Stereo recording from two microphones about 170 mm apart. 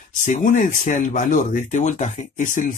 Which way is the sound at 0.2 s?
50° left (ahead or behind).